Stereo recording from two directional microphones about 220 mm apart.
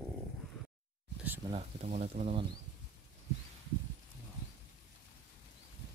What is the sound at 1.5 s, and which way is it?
Speech, 30° right (ahead or behind).